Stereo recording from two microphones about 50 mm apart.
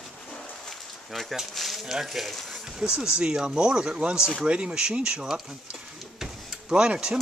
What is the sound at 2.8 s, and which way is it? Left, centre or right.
Speech, centre.